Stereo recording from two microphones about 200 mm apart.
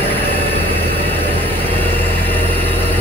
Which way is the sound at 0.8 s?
30° left (ahead or behind).